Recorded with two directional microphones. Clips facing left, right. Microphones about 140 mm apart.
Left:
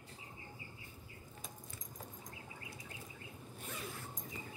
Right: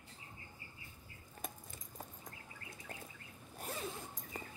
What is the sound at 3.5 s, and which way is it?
Zipper, 35° right (ahead or behind).